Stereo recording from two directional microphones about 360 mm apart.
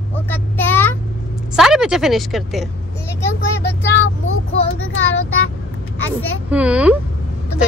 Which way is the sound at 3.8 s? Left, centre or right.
Left.